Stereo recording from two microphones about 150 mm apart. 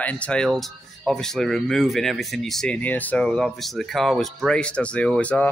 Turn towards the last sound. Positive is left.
turn(degrees=10)  # may be behind; listen again after turning